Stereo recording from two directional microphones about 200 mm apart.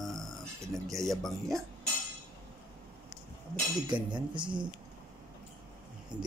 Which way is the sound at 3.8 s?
20° right (ahead or behind).